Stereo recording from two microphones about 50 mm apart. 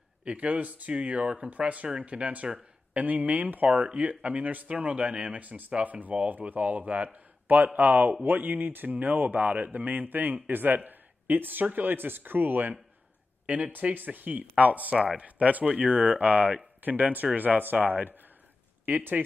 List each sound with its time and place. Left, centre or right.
0.2 s speech: right